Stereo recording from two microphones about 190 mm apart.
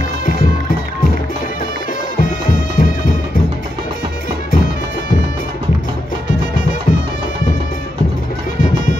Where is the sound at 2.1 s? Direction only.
45° left (ahead or behind).